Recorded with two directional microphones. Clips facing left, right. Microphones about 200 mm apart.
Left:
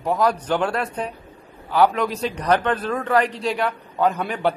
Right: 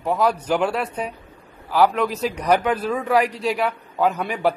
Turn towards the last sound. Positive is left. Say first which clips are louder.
# even
turn(degrees=-5)  # may be behind; listen again after turning